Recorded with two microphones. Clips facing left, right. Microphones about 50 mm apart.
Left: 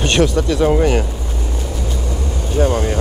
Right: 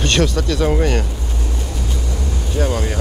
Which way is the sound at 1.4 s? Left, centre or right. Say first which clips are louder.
Left 2 dB; left.